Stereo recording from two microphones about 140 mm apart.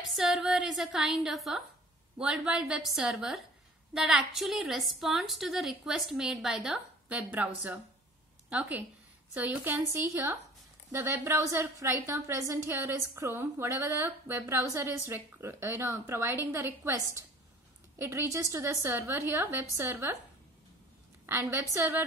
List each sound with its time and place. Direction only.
0.2 s a woman's voice: centre (ahead or behind); by 20.2 s 20° right (ahead or behind)
21.3 s a woman's voice: 20° right (ahead or behind)